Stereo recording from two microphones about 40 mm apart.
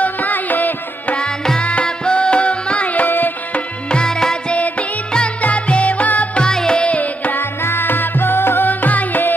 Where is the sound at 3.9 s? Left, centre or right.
Centre.